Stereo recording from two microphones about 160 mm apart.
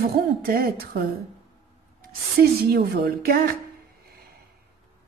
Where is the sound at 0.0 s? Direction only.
70° right (ahead or behind).